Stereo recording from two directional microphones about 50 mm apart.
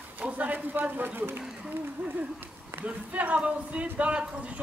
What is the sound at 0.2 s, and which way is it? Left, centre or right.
A man's voice, right.